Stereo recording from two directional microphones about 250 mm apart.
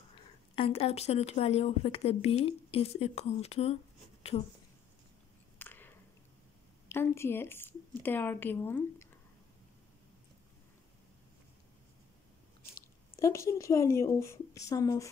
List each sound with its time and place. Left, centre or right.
0.1 s speech: left
5.6 s a sound: centre
6.9 s speech: centre
12.7 s speech: centre